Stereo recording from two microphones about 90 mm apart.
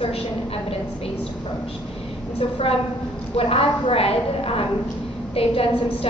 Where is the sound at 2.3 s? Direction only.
75° left (ahead or behind).